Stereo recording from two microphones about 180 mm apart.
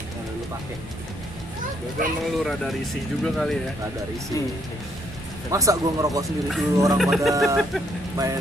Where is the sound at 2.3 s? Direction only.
Centre (ahead or behind).